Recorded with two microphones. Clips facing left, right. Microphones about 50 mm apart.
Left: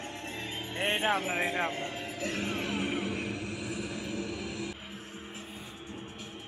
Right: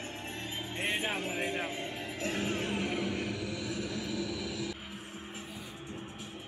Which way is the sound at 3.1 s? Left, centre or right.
Left.